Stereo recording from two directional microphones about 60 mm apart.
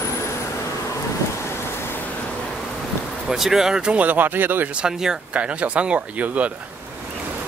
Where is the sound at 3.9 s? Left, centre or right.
Right.